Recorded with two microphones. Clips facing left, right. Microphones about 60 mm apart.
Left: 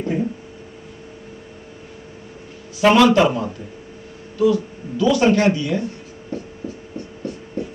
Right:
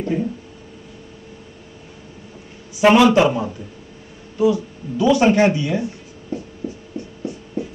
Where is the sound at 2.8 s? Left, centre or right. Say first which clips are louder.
Right 1 dB; centre.